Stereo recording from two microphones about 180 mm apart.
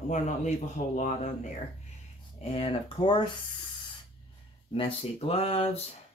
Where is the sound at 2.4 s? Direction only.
30° left (ahead or behind).